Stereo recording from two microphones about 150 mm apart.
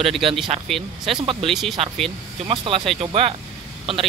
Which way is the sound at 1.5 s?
Centre (ahead or behind).